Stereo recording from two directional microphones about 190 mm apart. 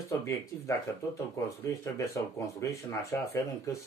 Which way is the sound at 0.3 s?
15° left (ahead or behind).